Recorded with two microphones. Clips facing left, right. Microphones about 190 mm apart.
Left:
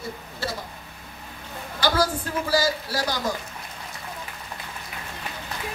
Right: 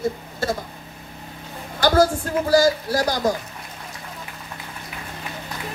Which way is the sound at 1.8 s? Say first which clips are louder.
Right 6 dB; 45° right (ahead or behind).